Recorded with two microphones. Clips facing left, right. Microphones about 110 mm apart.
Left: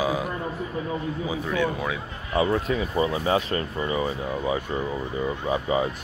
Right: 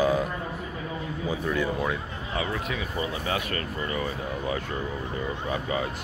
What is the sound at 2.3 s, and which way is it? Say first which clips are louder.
Speech: left 8 dB; 35° left (ahead or behind).